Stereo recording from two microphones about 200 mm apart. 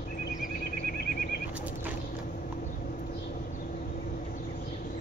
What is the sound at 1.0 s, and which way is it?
Goat, 50° left (ahead or behind).